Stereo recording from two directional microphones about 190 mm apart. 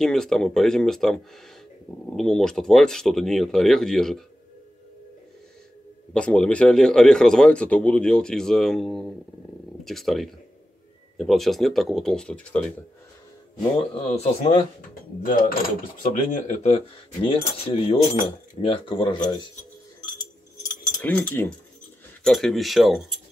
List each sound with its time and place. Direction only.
0.0 s a man's voice: centre (ahead or behind)
6.1 s a man's voice: 5° left (ahead or behind)
13.6 s speech: 30° left (ahead or behind)
16.0 s speech: 40° left (ahead or behind); by 19.5 s 20° left (ahead or behind)
21.0 s a man's voice: 10° left (ahead or behind)